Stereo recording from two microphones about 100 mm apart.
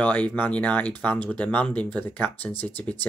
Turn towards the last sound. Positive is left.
turn(degrees=20)  # may be behind; listen again after turning